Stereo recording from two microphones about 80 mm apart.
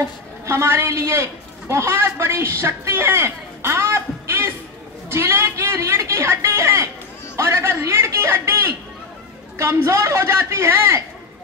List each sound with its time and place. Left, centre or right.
0.0 s a man's voice: right
7.3 s a sound: right
9.6 s a woman's voice: right